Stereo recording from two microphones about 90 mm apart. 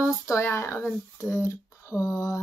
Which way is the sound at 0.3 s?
30° left (ahead or behind).